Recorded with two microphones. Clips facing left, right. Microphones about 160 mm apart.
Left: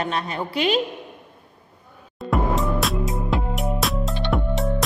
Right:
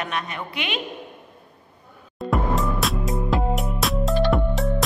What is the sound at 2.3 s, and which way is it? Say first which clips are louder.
Music: left 1 dB; centre (ahead or behind).